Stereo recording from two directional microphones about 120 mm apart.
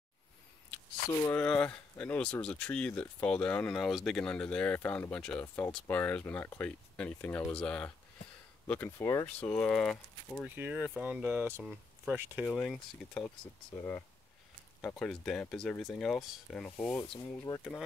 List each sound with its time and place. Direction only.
1.3 s speech: 10° left (ahead or behind)
8.9 s speech: 25° left (ahead or behind)
9.4 s speech: 10° left (ahead or behind)
10.4 s speech: 10° right (ahead or behind)
12.4 s speech: 10° left (ahead or behind)
13.7 s speech: 20° left (ahead or behind)
14.8 s speech: 10° left (ahead or behind)
17.5 s speech: 35° left (ahead or behind)